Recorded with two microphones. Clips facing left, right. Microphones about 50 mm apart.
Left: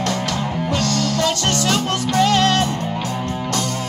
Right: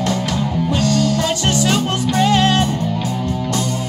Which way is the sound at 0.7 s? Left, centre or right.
Centre.